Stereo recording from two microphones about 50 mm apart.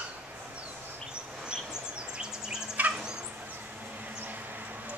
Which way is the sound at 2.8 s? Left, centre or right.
Right.